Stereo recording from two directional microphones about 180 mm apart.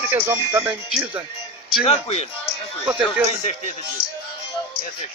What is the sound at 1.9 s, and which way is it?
Speech, 35° left (ahead or behind).